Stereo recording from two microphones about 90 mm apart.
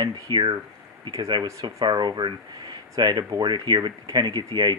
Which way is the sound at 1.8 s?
55° right (ahead or behind).